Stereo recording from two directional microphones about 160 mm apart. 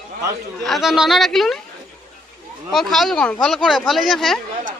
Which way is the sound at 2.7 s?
Centre (ahead or behind).